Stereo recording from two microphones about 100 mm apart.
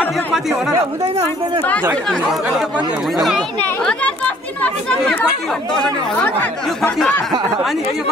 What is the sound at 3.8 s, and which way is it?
Speech, 10° left (ahead or behind).